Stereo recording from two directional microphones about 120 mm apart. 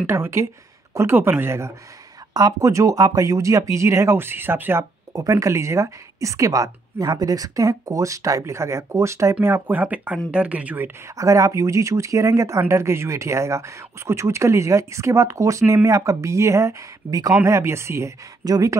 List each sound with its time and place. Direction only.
0.0 s speech: 20° right (ahead or behind)
5.1 s speech: 30° right (ahead or behind); by 10.9 s 10° right (ahead or behind)
11.1 s speech: 25° right (ahead or behind)